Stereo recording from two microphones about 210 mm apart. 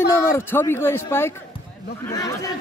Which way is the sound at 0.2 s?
10° left (ahead or behind).